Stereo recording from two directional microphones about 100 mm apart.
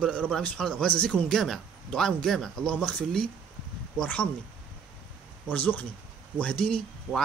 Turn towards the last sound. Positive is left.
turn(degrees=10)  # may be behind; listen again after turning